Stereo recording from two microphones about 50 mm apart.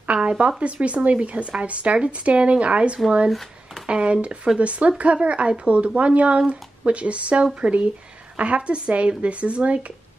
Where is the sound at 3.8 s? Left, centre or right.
Right.